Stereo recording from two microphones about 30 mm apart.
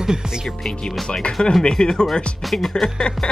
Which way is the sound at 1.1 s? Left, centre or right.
Left.